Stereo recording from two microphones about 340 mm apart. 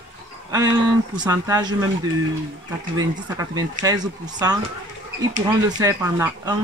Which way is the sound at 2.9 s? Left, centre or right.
Centre.